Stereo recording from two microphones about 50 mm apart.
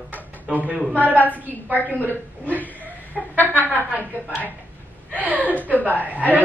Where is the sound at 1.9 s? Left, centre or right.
Left.